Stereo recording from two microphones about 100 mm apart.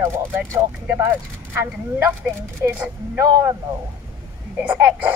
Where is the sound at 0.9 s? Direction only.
20° right (ahead or behind).